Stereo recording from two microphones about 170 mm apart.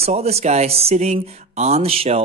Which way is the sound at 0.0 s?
40° right (ahead or behind).